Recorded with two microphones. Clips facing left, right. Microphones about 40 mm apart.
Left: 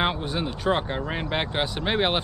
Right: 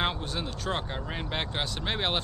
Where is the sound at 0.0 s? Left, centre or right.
Centre.